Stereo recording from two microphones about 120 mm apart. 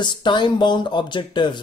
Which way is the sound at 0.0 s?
40° left (ahead or behind).